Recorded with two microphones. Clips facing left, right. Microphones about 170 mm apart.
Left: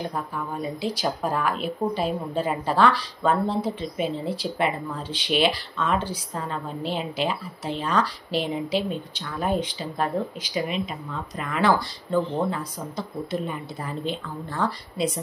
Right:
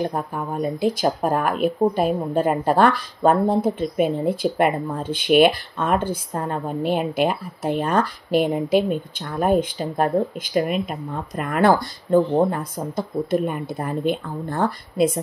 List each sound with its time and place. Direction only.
0.1 s speech: 50° right (ahead or behind)